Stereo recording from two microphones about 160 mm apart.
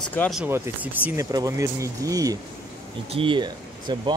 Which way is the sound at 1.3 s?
20° right (ahead or behind).